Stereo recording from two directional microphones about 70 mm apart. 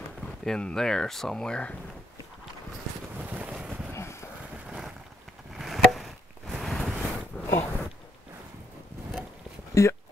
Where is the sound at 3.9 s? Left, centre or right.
Left.